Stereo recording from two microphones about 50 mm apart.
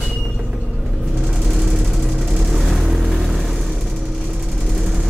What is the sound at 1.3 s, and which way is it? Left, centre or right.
Vehicle, centre.